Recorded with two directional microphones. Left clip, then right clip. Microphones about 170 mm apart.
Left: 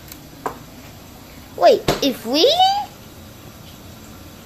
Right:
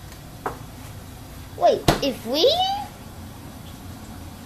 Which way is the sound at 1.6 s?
40° left (ahead or behind).